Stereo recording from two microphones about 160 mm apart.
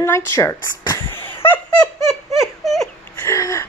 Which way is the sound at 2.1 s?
Centre (ahead or behind).